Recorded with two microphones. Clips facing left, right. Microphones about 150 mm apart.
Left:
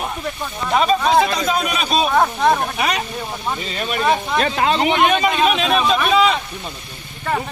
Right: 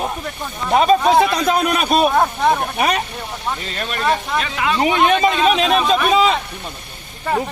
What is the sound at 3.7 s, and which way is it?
Speech, 10° left (ahead or behind).